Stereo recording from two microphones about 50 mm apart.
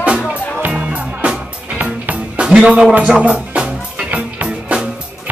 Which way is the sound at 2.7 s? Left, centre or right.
Right.